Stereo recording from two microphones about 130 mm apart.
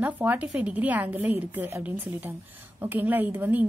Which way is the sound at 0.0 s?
10° right (ahead or behind).